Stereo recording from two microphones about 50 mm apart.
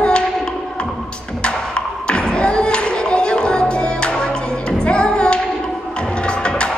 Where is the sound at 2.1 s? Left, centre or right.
Centre.